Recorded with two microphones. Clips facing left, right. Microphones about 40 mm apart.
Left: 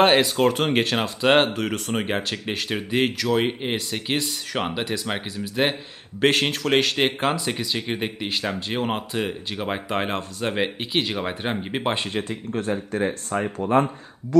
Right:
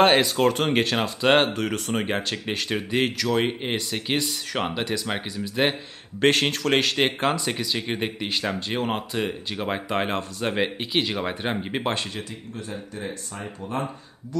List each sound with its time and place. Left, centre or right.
0.0 s speech: centre
11.9 s speech: left
12.5 s speech: left